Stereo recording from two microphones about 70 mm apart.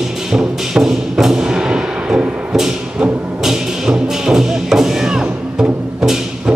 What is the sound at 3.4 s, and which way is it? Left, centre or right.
Music, centre.